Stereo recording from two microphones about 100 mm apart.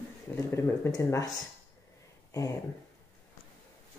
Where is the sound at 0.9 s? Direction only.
40° left (ahead or behind).